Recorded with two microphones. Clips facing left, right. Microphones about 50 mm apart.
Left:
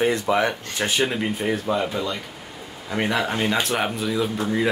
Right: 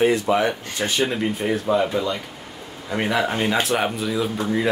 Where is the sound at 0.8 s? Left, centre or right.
Centre.